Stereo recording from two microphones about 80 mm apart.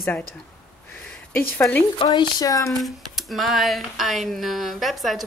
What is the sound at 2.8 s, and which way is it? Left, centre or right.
Speech, centre.